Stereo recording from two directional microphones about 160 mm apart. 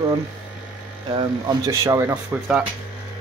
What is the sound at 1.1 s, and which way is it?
Speech, 30° right (ahead or behind).